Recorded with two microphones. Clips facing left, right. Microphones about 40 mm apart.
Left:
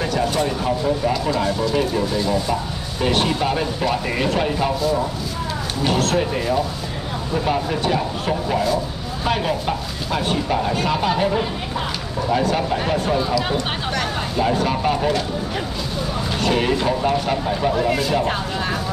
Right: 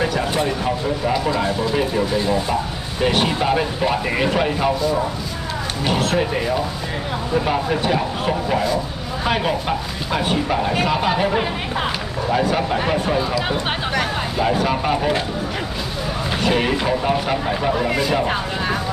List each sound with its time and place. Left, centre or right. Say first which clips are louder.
0.0 s speech: even; centre
16.3 s speech: even; centre